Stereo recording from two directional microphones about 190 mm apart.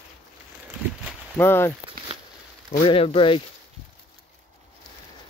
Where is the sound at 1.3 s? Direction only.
10° left (ahead or behind).